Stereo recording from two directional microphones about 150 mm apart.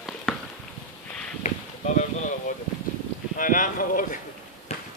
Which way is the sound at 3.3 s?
65° left (ahead or behind).